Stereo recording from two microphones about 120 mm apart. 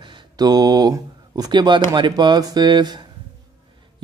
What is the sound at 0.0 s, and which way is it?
Speech, 35° right (ahead or behind).